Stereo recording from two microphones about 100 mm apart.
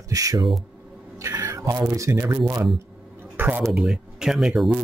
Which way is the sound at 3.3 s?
20° right (ahead or behind).